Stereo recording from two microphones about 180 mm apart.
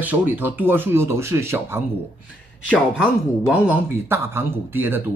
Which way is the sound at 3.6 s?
10° right (ahead or behind).